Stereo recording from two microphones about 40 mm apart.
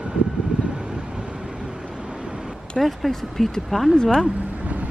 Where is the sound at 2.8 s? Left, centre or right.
Centre.